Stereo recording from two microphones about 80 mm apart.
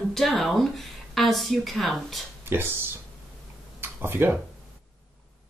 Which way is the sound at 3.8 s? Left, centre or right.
Right.